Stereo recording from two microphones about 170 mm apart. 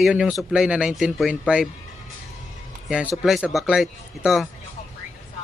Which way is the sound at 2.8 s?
5° right (ahead or behind).